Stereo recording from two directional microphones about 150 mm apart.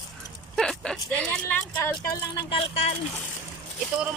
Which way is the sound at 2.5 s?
40° left (ahead or behind).